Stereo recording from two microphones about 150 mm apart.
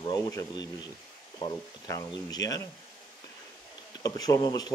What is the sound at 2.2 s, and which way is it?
Speech, 25° left (ahead or behind).